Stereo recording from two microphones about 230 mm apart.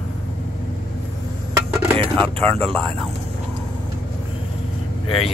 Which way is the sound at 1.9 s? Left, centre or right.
Centre.